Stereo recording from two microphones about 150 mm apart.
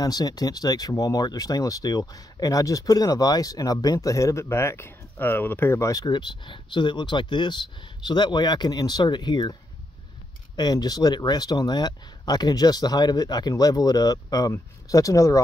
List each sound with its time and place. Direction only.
0.0 s speech: 25° left (ahead or behind)